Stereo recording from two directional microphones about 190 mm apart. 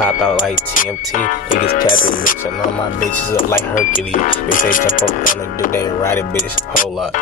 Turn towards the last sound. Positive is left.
turn(degrees=10)  # may be behind; listen again after turning